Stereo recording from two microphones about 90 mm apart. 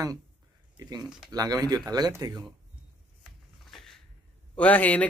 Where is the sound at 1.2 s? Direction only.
45° right (ahead or behind).